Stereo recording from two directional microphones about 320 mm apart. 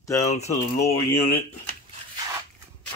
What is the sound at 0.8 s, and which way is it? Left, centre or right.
Speech, centre.